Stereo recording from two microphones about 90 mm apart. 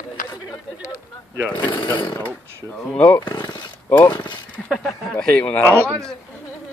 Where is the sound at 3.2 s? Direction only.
55° left (ahead or behind).